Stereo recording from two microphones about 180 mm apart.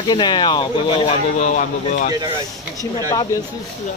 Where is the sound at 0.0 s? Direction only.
25° left (ahead or behind); by 2.1 s 45° left (ahead or behind).